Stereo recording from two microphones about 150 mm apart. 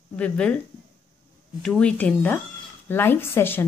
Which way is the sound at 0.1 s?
10° left (ahead or behind).